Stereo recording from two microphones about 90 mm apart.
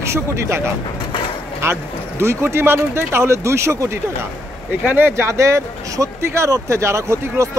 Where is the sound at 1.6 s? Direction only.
30° right (ahead or behind).